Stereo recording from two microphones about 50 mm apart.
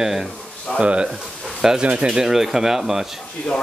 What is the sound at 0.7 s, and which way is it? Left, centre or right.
Speech, right.